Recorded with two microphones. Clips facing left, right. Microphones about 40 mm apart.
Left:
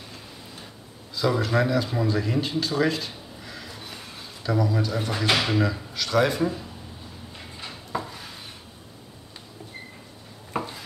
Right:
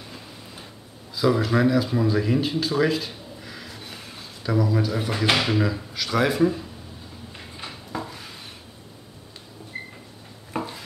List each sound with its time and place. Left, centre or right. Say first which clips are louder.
1.1 s speech: right 2 dB; centre
7.9 s dishes: left 2 dB; centre
10.5 s a sound: even; centre